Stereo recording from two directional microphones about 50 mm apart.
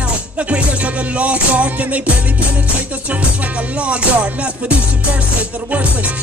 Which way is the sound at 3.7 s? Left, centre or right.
Right.